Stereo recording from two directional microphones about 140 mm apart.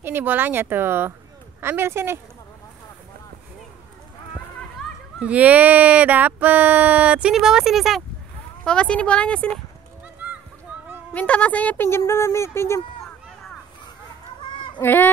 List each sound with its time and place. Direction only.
0.0 s speech: 15° right (ahead or behind)
5.2 s a woman's voice: 10° right (ahead or behind); by 9.6 s 5° left (ahead or behind)
10.7 s a sound: 10° right (ahead or behind)
11.1 s a woman's voice: 10° left (ahead or behind)
14.4 s fowl: 35° left (ahead or behind)
14.8 s a woman's voice: 15° left (ahead or behind)